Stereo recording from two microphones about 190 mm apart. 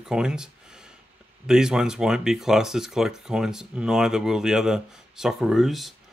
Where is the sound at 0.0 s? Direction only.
5° right (ahead or behind).